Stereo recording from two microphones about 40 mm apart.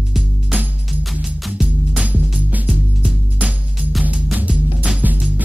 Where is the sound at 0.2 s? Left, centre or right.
Centre.